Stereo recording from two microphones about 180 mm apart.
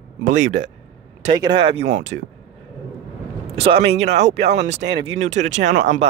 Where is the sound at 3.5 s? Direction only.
35° right (ahead or behind).